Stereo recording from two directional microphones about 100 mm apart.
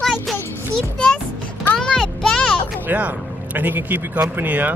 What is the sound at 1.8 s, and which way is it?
Speech, 5° left (ahead or behind).